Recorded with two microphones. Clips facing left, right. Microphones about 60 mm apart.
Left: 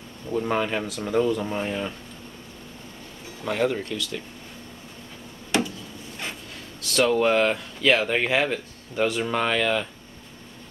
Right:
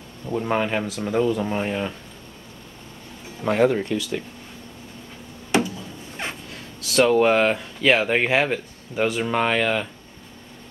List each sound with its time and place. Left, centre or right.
0.3 s speech: centre
0.8 s speech: centre
1.5 s speech: right
3.4 s speech: right
7.0 s speech: centre